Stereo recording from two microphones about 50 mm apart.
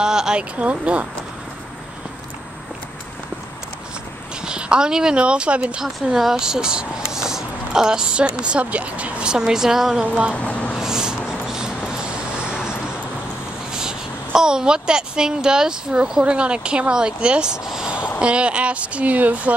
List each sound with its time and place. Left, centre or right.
0.0 s speech: centre
0.6 s speech: right
4.5 s speech: centre
5.8 s speech: centre; by 9.3 s right
9.3 s a woman's voice: centre
10.0 s speech: right
10.3 s a sound: left
10.8 s vehicle: centre
13.7 s a woman's voice: centre
17.6 s a sound: centre
18.2 s speech: right